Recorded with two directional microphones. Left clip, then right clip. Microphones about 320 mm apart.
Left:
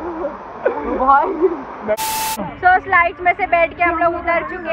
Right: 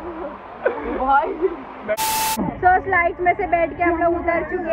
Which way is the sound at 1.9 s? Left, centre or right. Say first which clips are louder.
Left 1 dB; centre.